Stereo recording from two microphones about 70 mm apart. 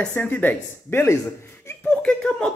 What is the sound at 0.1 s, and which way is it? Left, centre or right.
Speech, left.